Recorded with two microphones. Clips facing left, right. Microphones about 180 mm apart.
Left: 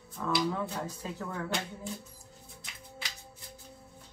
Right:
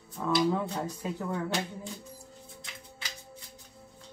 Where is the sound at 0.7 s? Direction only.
20° right (ahead or behind).